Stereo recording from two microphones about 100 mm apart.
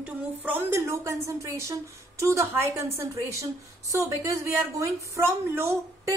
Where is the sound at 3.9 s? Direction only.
30° right (ahead or behind).